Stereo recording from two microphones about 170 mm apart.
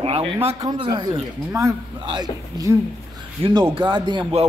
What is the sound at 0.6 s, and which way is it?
Speech, 20° right (ahead or behind).